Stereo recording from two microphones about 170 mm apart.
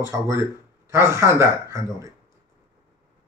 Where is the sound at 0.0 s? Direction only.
15° right (ahead or behind).